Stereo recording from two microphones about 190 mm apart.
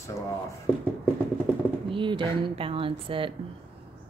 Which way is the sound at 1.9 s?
25° right (ahead or behind).